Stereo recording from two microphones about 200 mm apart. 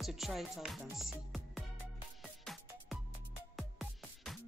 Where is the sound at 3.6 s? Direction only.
Centre (ahead or behind).